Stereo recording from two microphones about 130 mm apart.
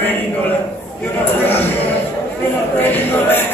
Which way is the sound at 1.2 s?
15° left (ahead or behind).